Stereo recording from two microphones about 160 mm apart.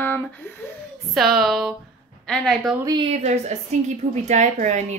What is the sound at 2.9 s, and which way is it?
A woman's voice, 35° right (ahead or behind).